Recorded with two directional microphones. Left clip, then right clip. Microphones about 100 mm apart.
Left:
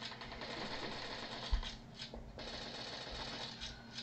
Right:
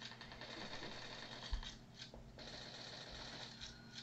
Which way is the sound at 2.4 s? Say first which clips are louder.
Left 6 dB; 50° left (ahead or behind).